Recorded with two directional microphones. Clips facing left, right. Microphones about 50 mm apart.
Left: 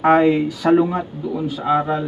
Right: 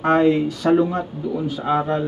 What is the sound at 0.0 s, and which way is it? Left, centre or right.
Speech, centre.